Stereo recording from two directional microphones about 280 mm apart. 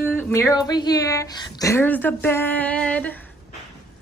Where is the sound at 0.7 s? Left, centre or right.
Centre.